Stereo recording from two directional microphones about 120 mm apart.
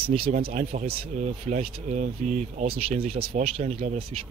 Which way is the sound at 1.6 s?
70° right (ahead or behind).